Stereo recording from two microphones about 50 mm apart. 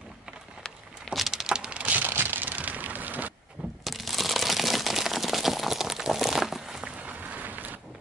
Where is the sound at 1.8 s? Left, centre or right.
Right.